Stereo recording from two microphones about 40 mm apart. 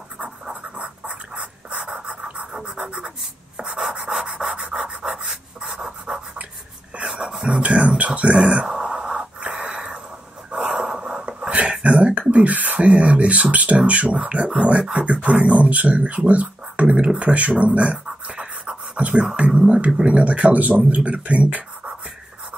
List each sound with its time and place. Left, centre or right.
0.2 s scratch: right
2.0 s pant: right
2.8 s scratch: right
3.5 s rub: centre
4.8 s rub: centre
5.6 s pant: right
7.1 s a sound: right
8.0 s speech: right
8.6 s radio: centre
10.5 s a sound: centre
11.8 s speech: right
18.2 s a sound: right
19.3 s speech: right